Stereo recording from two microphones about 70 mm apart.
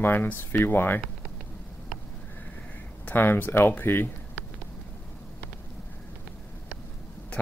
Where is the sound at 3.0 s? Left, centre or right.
Left.